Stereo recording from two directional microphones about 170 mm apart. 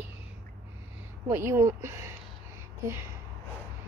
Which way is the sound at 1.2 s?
15° right (ahead or behind).